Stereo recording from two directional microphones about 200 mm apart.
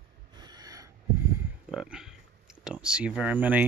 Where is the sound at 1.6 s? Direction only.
5° right (ahead or behind).